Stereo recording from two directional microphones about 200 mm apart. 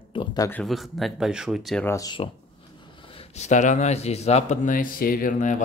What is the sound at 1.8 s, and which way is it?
Speech, 15° left (ahead or behind).